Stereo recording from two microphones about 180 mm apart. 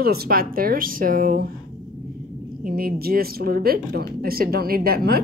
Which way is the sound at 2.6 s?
55° right (ahead or behind).